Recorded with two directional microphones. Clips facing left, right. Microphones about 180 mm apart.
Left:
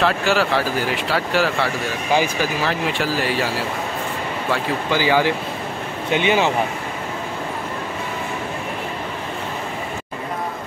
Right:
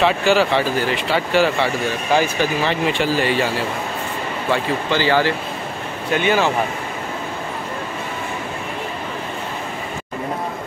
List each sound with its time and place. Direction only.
0.0 s speech: centre (ahead or behind); by 6.5 s 15° left (ahead or behind)